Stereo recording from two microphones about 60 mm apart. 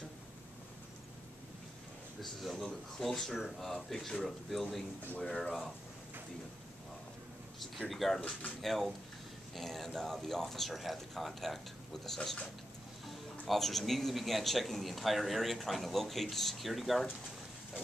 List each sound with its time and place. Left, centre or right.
2.2 s speech: centre
7.9 s speech: centre
8.2 s speech: left
8.5 s speech: centre